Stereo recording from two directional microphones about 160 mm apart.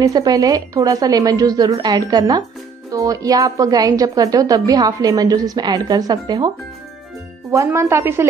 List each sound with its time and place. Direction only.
0.0 s a woman's voice: 25° right (ahead or behind)
7.5 s speech: 20° right (ahead or behind)